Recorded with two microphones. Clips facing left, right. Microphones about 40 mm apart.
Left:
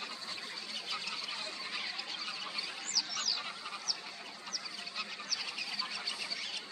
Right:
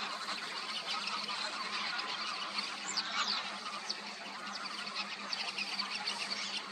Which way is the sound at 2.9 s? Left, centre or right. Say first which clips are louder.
Right 3 dB; right.